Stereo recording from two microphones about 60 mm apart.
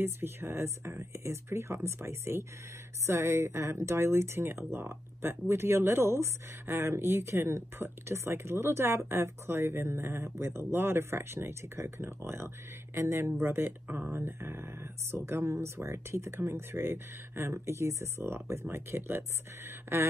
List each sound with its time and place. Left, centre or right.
0.0 s speech: right